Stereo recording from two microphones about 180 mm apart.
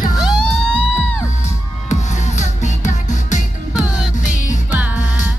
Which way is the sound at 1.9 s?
40° left (ahead or behind).